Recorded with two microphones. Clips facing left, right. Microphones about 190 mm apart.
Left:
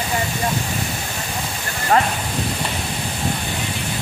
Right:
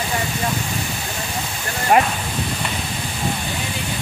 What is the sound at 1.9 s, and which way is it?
Speech, 15° right (ahead or behind).